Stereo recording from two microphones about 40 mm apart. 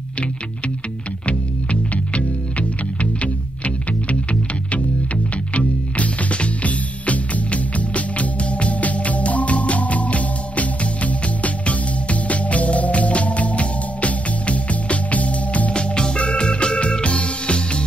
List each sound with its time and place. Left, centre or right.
1.2 s music: left
15.7 s music: left